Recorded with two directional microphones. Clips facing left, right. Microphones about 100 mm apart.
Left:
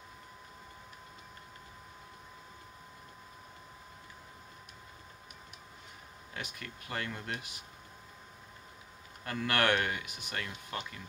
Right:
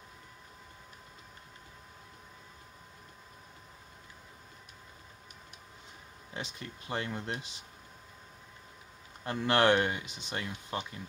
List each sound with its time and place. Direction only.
6.3 s speech: 25° right (ahead or behind)
9.2 s speech: 25° right (ahead or behind)